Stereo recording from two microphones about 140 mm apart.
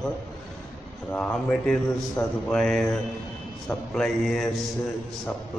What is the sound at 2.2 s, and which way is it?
Speech, 15° left (ahead or behind).